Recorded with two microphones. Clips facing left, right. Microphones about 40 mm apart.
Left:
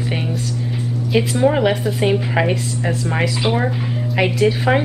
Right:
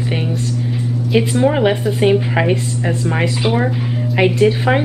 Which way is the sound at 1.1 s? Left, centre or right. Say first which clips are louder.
Right 1 dB; centre.